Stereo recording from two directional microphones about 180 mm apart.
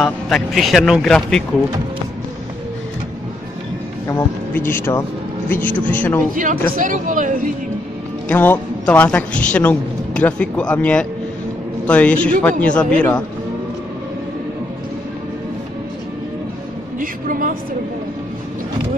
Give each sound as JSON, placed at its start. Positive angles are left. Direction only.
{"t": 0.0, "sound": "a man's voice", "side_deg": 0}
{"t": 4.1, "sound": "speech", "side_deg": 10}
{"t": 6.3, "sound": "speech", "side_deg": -45}
{"t": 8.3, "sound": "speech", "side_deg": 10}
{"t": 17.0, "sound": "a sound", "side_deg": -50}